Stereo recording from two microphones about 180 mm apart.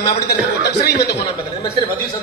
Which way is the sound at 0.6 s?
65° left (ahead or behind).